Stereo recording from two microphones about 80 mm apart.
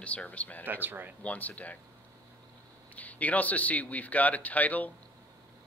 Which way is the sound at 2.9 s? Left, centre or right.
Centre.